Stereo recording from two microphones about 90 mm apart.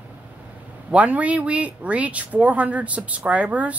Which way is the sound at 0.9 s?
15° right (ahead or behind).